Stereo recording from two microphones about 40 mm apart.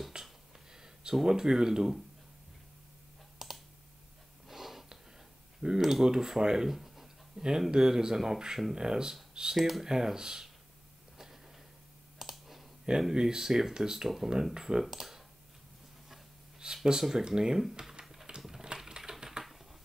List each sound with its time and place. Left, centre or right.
0.2 s a sound: centre
1.2 s speech: centre
3.3 s computer keyboard: centre
4.5 s a sound: centre
5.6 s speech: centre
6.7 s a sound: centre
7.7 s speech: centre
12.2 s clicking: centre
13.1 s speech: centre
14.0 s speech: centre
16.5 s a sound: centre
17.3 s speech: centre
18.0 s typing: centre